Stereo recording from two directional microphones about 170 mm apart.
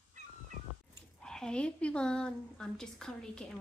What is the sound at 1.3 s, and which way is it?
A woman's voice, 5° left (ahead or behind).